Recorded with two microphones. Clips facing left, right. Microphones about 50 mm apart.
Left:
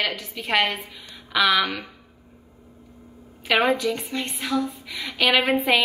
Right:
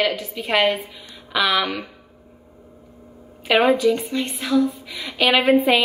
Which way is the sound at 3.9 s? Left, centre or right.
Centre.